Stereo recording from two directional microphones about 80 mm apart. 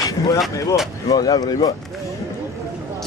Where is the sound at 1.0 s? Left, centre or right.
Left.